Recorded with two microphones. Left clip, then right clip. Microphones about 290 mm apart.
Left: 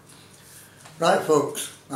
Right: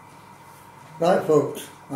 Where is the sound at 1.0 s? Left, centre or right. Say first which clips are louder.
Even; centre.